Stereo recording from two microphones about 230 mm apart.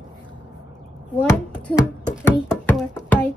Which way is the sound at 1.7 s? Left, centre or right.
Centre.